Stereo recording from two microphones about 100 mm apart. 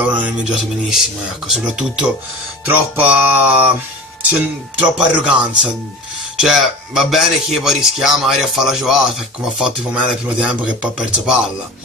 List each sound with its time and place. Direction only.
0.0 s a man's voice: 15° right (ahead or behind)
2.6 s a man's voice: 15° right (ahead or behind)